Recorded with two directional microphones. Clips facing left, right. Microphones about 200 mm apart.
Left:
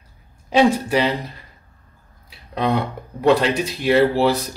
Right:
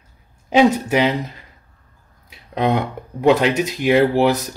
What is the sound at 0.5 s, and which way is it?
Speech, 20° right (ahead or behind).